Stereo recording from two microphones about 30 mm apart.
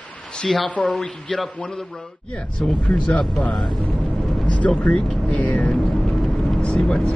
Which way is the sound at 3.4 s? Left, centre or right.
Left.